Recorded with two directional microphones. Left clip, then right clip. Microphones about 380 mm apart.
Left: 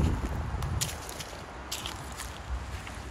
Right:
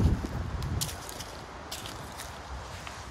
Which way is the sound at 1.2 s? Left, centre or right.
Centre.